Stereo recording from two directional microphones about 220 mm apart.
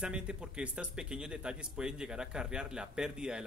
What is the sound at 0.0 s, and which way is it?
Speech, 5° right (ahead or behind).